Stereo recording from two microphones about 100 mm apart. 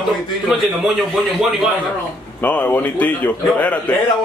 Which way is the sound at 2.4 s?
15° left (ahead or behind).